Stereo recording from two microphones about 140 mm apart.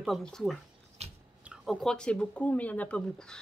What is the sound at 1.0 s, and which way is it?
Biting, 50° right (ahead or behind).